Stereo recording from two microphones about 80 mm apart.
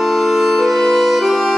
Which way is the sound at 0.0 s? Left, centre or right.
Centre.